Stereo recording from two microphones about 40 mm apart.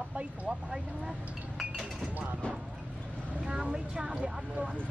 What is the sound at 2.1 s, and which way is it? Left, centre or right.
Speech, right.